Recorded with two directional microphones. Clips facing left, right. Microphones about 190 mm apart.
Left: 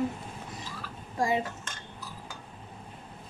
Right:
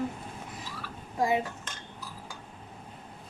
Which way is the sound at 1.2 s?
5° right (ahead or behind).